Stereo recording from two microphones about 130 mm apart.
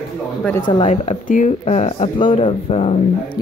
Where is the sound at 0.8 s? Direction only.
65° left (ahead or behind); by 2.9 s 50° left (ahead or behind).